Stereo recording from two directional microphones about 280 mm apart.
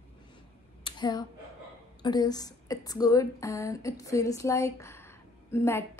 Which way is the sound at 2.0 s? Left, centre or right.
Centre.